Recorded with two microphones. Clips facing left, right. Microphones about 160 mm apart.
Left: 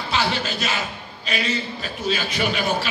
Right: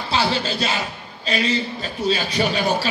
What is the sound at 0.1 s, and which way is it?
A man's voice, 35° right (ahead or behind).